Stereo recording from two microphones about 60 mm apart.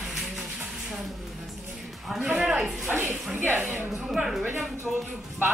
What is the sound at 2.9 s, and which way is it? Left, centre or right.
Speech, right.